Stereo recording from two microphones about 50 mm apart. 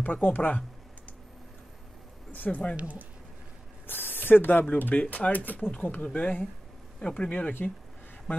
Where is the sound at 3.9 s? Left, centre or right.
Left.